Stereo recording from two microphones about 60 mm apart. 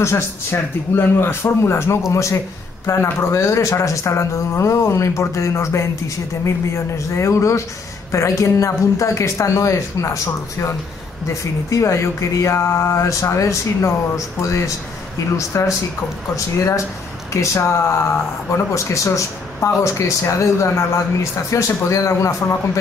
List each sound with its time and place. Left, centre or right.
0.0 s speech: left
11.7 s speech: left